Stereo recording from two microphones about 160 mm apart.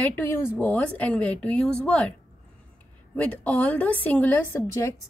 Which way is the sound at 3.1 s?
10° left (ahead or behind).